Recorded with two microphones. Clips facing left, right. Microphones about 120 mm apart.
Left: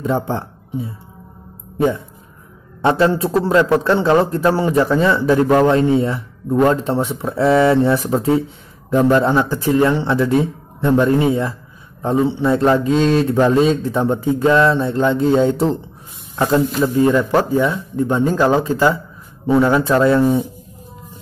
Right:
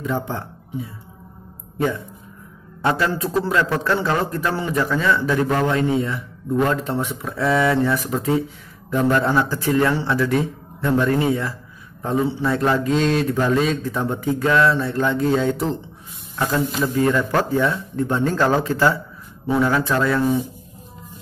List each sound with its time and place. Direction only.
0.0 s a man's voice: 35° left (ahead or behind)